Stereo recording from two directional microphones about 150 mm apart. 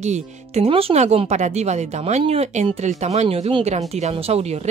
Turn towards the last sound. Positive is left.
turn(degrees=-45)  # may be behind; listen again after turning